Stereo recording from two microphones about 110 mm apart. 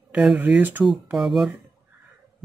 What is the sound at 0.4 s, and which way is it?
Speech, 15° right (ahead or behind).